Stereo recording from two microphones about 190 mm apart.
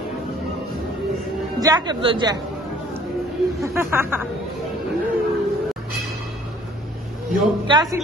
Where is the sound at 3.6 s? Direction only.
10° right (ahead or behind).